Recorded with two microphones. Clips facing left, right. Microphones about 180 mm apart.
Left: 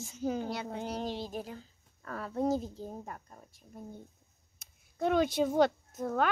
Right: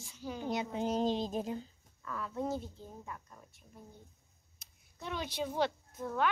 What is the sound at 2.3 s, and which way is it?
Speech, 40° left (ahead or behind).